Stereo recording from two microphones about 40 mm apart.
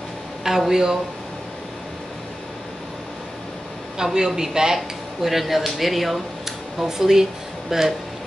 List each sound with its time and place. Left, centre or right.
0.4 s speech: centre
4.0 s speech: centre
4.7 s speech: centre